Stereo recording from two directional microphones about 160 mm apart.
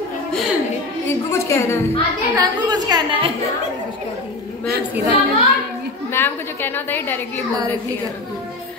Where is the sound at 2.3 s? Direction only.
25° right (ahead or behind).